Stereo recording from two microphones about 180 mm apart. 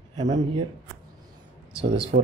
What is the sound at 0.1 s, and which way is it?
Speech, 25° right (ahead or behind).